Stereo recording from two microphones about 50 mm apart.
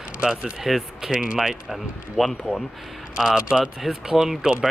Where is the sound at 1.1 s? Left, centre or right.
Centre.